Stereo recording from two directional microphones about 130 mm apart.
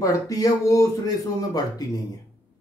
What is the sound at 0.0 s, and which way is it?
Speech, 25° left (ahead or behind).